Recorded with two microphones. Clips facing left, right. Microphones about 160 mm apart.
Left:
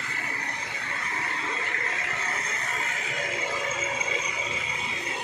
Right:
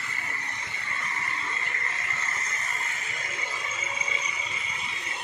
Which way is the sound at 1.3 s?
90° left.